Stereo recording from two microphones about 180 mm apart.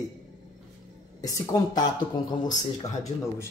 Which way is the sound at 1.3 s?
20° left (ahead or behind).